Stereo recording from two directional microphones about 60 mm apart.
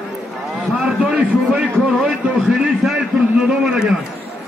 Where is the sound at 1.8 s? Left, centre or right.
Centre.